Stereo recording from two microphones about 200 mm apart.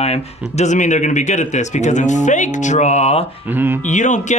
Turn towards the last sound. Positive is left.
turn(degrees=35)  # may be behind; listen again after turning